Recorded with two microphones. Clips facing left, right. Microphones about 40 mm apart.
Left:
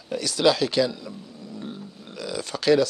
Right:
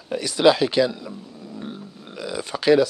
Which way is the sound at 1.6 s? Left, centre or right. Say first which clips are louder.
Right 2 dB; centre.